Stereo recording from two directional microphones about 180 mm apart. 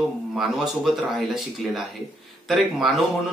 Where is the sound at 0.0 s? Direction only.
Centre (ahead or behind).